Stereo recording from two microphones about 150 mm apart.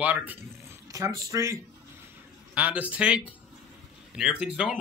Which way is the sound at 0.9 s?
20° right (ahead or behind).